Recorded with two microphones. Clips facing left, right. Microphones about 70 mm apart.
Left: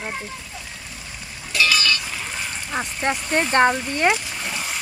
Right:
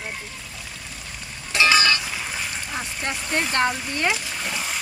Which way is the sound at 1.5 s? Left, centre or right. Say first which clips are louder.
Right 2 dB; right.